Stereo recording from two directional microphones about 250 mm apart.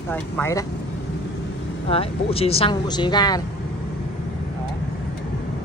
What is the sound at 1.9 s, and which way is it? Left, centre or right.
A woman's voice, left.